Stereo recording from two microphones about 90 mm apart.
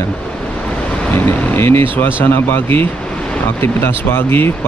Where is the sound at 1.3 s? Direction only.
25° left (ahead or behind).